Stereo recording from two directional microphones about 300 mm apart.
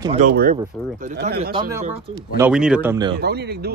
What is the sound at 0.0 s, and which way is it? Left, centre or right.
Speech, centre.